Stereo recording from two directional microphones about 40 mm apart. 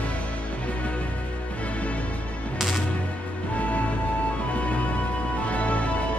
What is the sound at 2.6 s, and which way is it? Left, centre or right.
Music, centre.